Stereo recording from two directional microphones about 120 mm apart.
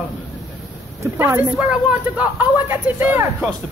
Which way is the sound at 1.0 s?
20° right (ahead or behind).